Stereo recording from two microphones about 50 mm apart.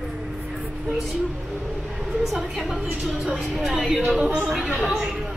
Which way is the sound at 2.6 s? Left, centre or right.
Centre.